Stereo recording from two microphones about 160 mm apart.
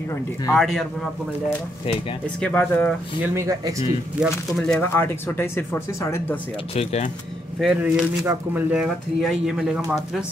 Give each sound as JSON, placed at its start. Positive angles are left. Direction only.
{"t": 0.6, "sound": "speech", "side_deg": 0}
{"t": 2.4, "sound": "speech", "side_deg": 10}
{"t": 3.2, "sound": "speech", "side_deg": -20}
{"t": 4.2, "sound": "speech", "side_deg": 0}
{"t": 4.7, "sound": "speech", "side_deg": 15}
{"t": 6.7, "sound": "speech", "side_deg": 40}
{"t": 7.6, "sound": "speech", "side_deg": -5}